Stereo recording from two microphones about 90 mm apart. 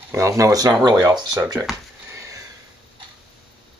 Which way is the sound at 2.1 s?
35° right (ahead or behind).